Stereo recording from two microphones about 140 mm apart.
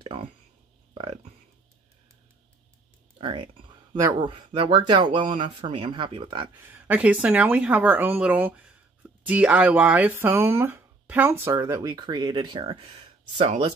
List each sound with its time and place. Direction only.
0.0 s a sound: 40° right (ahead or behind)
0.9 s speech: 40° right (ahead or behind)
3.2 s speech: 35° right (ahead or behind)
3.9 s speech: 25° right (ahead or behind)
4.3 s speech: 40° right (ahead or behind)
6.6 s speech: 10° right (ahead or behind)
11.6 s speech: 30° right (ahead or behind)